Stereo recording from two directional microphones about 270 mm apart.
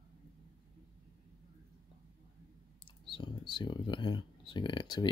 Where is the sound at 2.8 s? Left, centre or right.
Centre.